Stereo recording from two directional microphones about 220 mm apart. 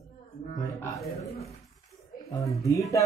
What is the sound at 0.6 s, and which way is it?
Speech, 15° left (ahead or behind).